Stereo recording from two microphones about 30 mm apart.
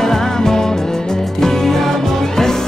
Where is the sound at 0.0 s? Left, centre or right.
Centre.